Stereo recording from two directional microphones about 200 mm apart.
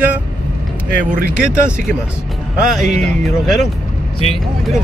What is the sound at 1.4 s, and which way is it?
Speech, 5° right (ahead or behind).